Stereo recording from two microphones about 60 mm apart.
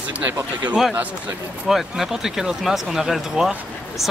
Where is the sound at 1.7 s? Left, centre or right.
Centre.